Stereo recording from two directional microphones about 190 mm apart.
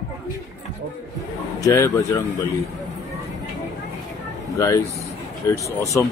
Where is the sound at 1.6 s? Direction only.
15° left (ahead or behind).